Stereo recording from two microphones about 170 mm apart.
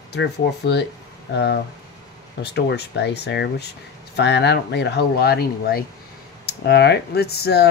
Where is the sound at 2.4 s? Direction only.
85° left.